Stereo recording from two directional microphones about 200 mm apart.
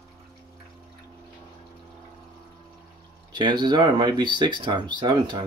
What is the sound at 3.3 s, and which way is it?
Speech, 20° right (ahead or behind).